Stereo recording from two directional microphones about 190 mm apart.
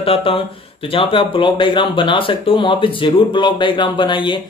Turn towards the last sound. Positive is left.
turn(degrees=25)  # may be behind; listen again after turning